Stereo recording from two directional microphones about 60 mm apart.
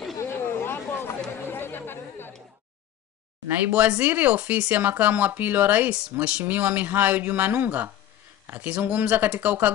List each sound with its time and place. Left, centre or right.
0.2 s a sound: left
1.5 s chatter: left
3.7 s speech: right